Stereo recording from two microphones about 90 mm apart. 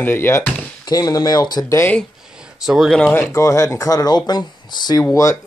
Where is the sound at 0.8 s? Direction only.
45° left (ahead or behind).